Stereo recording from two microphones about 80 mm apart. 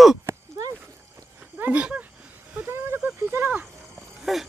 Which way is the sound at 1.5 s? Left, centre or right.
Centre.